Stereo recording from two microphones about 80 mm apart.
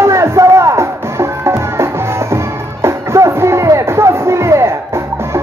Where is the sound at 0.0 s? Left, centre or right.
Right.